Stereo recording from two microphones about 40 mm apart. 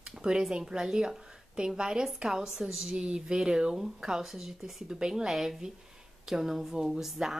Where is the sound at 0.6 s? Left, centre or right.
Centre.